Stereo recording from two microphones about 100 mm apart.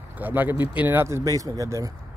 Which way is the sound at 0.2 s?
20° right (ahead or behind).